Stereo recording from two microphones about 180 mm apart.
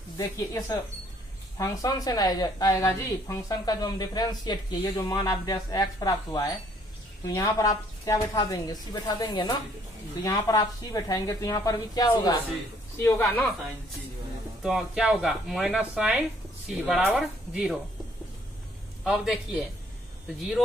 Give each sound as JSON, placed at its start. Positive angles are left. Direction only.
{"t": 0.2, "sound": "a woman's voice", "side_deg": 20}
{"t": 13.0, "sound": "speech", "side_deg": 10}
{"t": 14.6, "sound": "speech", "side_deg": -5}
{"t": 19.0, "sound": "speech", "side_deg": 0}